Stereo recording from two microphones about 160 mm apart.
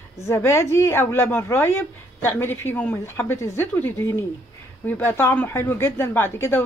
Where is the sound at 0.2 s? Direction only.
15° left (ahead or behind).